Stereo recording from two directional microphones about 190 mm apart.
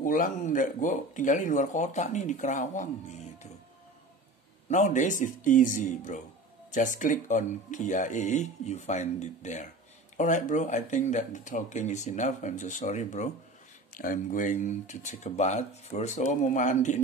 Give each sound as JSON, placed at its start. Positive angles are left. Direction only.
{"t": 0.0, "sound": "speech", "side_deg": 45}
{"t": 4.6, "sound": "speech", "side_deg": 40}